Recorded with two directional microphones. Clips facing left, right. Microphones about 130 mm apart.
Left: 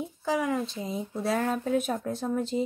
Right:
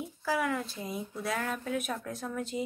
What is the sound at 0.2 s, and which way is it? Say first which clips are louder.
Speech: left 3 dB; 20° left (ahead or behind).